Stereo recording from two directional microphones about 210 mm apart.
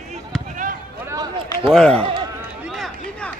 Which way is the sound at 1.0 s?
15° right (ahead or behind).